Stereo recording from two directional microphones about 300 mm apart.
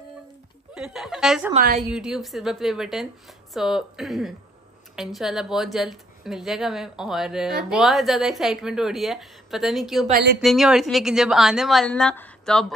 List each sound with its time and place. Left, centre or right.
0.7 s speech: centre
1.5 s speech: right
1.8 s speech: centre
10.0 s speech: right
10.4 s speech: centre